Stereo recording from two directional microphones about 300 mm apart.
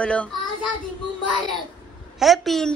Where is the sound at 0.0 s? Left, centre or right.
Centre.